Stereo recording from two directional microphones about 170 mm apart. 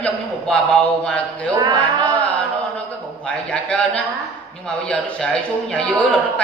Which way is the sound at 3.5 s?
10° left (ahead or behind).